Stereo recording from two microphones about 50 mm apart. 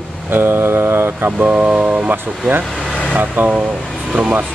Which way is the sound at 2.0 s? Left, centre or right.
Right.